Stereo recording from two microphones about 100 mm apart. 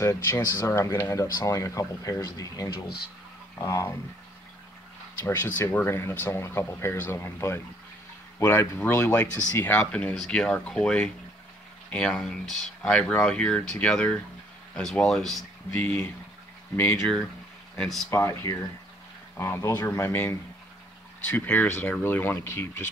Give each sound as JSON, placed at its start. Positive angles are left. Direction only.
{"t": 0.0, "sound": "speech", "side_deg": 30}
{"t": 5.2, "sound": "speech", "side_deg": 25}
{"t": 10.1, "sound": "speech", "side_deg": 5}
{"t": 15.8, "sound": "speech", "side_deg": 20}
{"t": 17.7, "sound": "speech", "side_deg": 0}
{"t": 18.1, "sound": "speech", "side_deg": 30}